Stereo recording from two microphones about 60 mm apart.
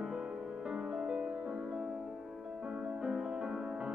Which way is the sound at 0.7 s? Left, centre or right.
Centre.